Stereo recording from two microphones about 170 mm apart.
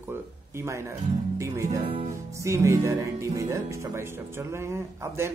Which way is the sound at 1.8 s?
35° right (ahead or behind).